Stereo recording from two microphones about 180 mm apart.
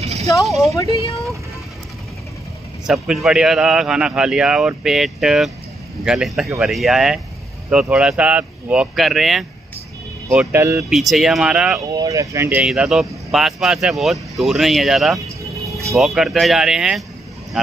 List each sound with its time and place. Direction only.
0.0 s a sound: 35° right (ahead or behind)
2.9 s speech: centre (ahead or behind)
10.2 s speech: 15° right (ahead or behind)
10.8 s speech: centre (ahead or behind)
11.9 s speech: 20° right (ahead or behind); by 17.0 s 5° right (ahead or behind)